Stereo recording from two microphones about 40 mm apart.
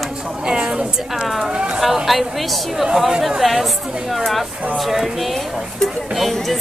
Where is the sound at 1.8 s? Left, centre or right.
Centre.